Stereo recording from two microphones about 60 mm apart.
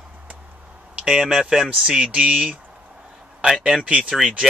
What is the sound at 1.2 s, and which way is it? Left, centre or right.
Speech, centre.